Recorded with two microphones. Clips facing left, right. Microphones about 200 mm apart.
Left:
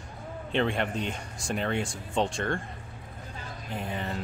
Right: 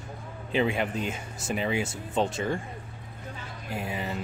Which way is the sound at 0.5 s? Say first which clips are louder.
Right 1 dB; 5° right (ahead or behind).